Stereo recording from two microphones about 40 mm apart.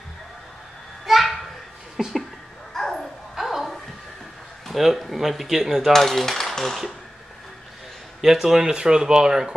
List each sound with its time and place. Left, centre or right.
1.0 s a sound: centre
2.0 s speech: centre
2.7 s bow-wow: centre
3.3 s a sound: centre
4.6 s speech: centre
5.9 s speech: centre
8.2 s speech: centre